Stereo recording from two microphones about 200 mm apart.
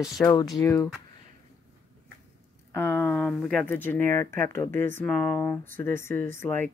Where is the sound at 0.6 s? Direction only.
15° left (ahead or behind).